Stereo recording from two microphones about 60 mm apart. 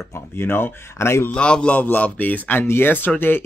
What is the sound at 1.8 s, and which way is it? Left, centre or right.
Speech, left.